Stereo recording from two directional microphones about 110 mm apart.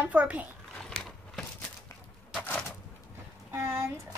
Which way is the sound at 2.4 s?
5° left (ahead or behind).